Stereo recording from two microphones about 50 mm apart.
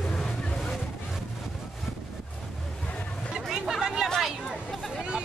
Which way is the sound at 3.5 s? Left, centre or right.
Centre.